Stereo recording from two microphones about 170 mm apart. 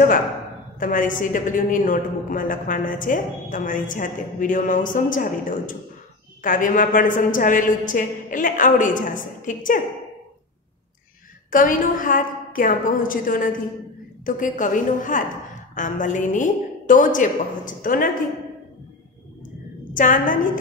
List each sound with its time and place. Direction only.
0.7 s a woman's voice: 50° left (ahead or behind)
11.5 s a woman's voice: 55° left (ahead or behind)
20.0 s a woman's voice: 50° left (ahead or behind)